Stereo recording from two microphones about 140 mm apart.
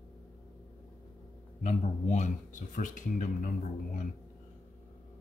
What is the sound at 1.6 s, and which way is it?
Speech, 55° left (ahead or behind).